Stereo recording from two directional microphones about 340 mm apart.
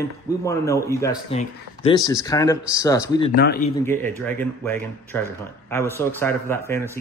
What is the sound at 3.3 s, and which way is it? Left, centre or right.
Speech, left.